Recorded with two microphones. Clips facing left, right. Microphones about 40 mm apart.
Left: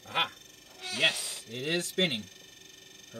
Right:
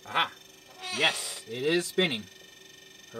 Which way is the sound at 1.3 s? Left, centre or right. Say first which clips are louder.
Right 5 dB; centre.